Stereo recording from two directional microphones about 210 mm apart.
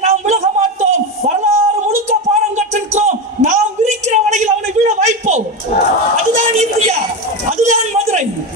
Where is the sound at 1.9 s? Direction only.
35° right (ahead or behind).